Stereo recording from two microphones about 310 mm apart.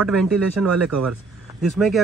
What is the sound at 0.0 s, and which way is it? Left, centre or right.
Speech, centre.